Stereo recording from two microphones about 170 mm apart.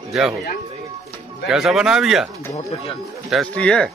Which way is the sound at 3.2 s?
5° left (ahead or behind).